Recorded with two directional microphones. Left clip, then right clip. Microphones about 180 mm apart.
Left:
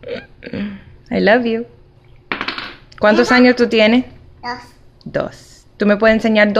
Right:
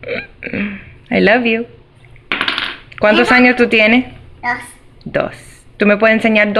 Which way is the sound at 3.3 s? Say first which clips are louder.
Right 2 dB; 25° left (ahead or behind).